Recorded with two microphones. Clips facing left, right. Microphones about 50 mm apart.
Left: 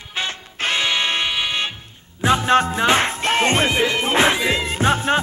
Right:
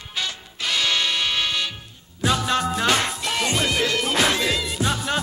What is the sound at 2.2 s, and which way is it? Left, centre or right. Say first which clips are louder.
Music: left 6 dB; left.